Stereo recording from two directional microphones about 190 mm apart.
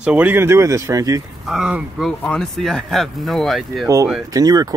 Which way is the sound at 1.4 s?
Centre (ahead or behind).